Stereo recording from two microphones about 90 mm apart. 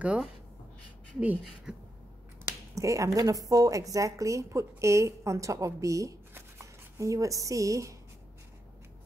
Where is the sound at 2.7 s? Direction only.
35° right (ahead or behind).